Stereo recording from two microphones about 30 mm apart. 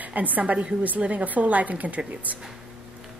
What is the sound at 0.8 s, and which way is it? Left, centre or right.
A woman's voice, right.